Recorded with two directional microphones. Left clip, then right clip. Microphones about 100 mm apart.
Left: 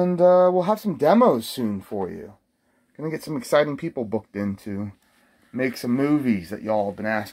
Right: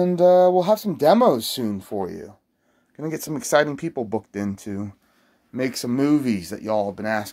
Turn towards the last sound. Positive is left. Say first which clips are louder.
# right 1 dB
turn(degrees=-20)  # may be behind; listen again after turning